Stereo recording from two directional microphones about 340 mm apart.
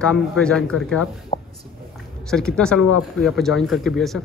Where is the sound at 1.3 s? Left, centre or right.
Centre.